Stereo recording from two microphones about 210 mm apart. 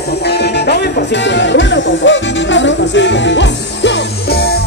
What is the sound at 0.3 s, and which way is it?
Music, 50° left (ahead or behind).